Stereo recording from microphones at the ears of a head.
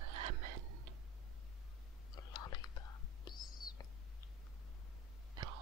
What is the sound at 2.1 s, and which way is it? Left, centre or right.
Whispering, left.